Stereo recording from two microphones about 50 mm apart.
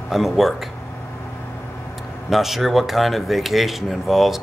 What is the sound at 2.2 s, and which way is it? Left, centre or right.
Speech, centre.